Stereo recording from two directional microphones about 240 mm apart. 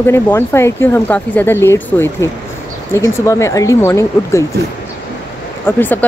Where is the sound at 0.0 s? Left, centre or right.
Centre.